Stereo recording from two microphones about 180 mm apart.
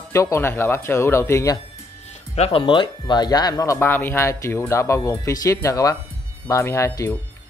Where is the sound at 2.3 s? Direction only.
35° left (ahead or behind); by 7.1 s 15° left (ahead or behind).